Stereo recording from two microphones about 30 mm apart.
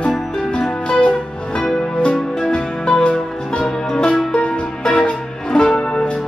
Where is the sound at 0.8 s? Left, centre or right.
Left.